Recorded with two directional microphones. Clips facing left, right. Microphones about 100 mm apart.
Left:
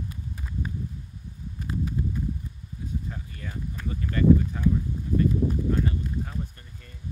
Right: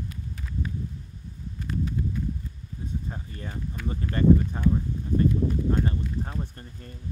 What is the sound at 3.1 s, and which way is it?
Speech, 35° right (ahead or behind).